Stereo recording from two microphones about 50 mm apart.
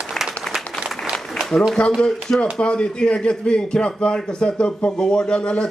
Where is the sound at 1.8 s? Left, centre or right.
Left.